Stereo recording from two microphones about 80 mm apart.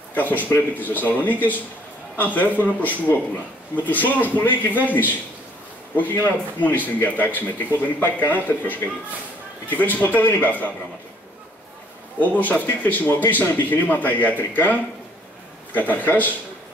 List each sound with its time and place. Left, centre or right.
0.1 s a man's voice: left
9.7 s a man's voice: left
12.2 s a man's voice: left